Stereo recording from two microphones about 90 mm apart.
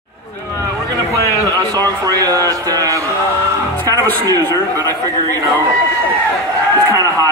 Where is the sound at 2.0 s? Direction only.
45° right (ahead or behind).